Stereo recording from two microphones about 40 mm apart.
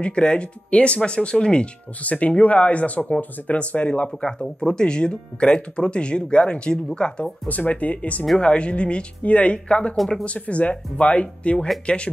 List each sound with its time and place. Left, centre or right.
0.0 s speech: left
2.0 s speech: left
4.2 s speech: centre
7.4 s speech: left
9.9 s speech: centre
10.2 s speech: left